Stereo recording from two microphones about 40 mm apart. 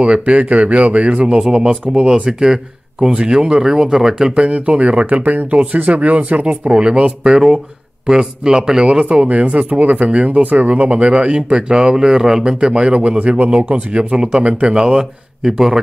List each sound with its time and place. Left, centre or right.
0.0 s speech: right
1.4 s speech: centre
4.5 s speech: right
6.7 s speech: right
9.3 s speech: right
10.7 s speech: right
11.9 s speech: centre